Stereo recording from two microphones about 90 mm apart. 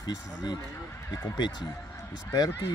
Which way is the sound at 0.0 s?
55° left (ahead or behind).